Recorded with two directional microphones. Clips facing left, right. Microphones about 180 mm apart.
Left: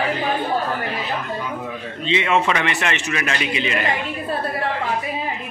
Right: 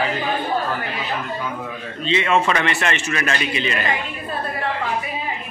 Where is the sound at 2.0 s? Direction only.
15° left (ahead or behind).